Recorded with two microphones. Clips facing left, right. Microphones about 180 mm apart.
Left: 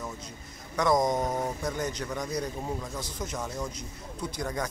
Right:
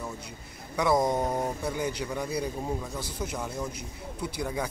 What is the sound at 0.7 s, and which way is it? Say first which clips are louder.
Speech: even; 10° right (ahead or behind).